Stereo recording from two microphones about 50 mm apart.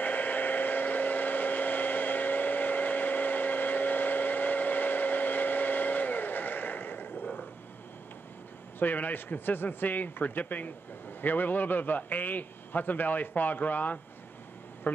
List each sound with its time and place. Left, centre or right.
0.0 s vehicle: left
8.7 s a man's voice: left